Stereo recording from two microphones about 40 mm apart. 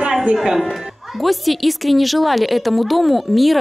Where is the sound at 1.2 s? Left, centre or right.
Centre.